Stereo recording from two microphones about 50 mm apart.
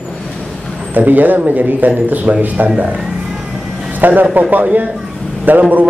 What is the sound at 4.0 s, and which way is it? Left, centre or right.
Speech, right.